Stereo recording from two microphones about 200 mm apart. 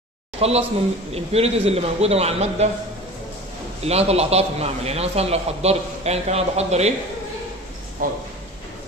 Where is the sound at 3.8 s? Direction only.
30° right (ahead or behind).